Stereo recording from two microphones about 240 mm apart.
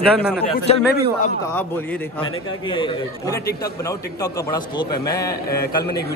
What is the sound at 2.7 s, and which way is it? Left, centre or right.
Speech, centre.